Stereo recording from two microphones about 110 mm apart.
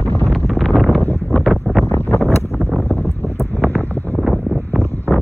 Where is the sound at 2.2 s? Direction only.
25° left (ahead or behind).